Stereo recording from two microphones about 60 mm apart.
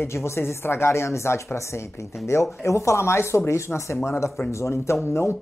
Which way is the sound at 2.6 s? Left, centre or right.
Left.